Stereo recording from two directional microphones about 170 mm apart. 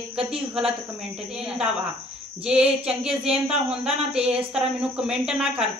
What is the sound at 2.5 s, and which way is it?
Speech, 5° right (ahead or behind).